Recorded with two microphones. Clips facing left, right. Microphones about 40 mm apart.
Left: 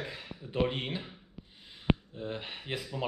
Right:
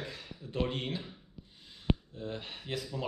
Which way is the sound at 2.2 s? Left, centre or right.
Centre.